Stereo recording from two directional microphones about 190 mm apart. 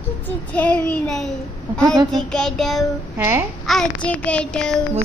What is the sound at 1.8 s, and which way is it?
Speech, 20° right (ahead or behind).